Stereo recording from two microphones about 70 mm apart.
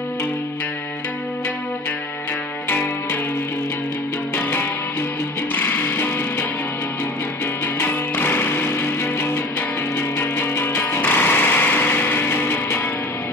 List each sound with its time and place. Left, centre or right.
5.7 s music: left
7.8 s music: left